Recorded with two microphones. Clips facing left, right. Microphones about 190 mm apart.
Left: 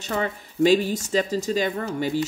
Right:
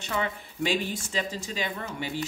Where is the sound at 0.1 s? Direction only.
40° left (ahead or behind).